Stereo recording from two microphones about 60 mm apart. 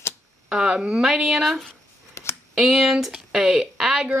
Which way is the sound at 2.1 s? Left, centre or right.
Left.